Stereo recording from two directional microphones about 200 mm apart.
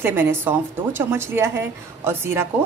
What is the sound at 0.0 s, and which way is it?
A woman's voice, 10° right (ahead or behind).